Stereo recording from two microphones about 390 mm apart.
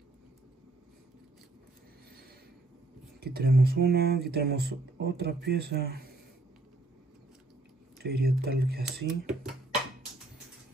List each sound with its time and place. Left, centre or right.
3.2 s speech: right
8.0 s speech: right
9.2 s speech: centre